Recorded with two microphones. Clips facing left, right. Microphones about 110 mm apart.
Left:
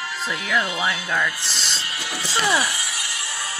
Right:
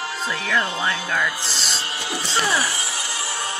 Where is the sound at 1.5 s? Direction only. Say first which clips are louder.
Right 1 dB; centre (ahead or behind).